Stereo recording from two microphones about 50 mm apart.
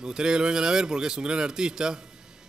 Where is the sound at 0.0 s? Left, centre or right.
Centre.